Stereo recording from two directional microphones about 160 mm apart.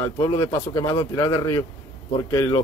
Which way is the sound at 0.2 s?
15° left (ahead or behind).